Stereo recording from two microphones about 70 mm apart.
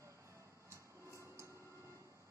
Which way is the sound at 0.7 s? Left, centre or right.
Right.